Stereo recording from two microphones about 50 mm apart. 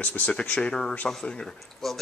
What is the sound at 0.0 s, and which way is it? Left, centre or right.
Speech, left.